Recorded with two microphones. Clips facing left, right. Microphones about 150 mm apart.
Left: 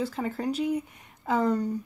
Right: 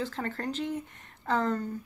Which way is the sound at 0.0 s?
5° left (ahead or behind).